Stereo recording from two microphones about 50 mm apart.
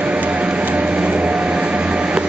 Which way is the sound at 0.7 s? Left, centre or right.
Right.